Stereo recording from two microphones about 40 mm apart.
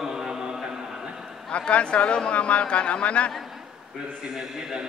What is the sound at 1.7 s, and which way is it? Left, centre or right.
A man's voice, left.